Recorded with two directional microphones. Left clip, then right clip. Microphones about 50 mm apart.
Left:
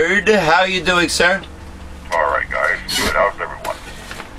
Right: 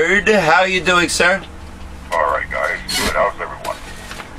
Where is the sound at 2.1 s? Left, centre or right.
Left.